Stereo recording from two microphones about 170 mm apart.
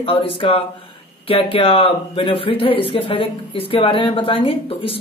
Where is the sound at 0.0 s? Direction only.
30° left (ahead or behind).